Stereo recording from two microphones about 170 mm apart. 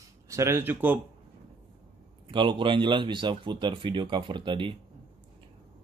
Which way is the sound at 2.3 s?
30° right (ahead or behind).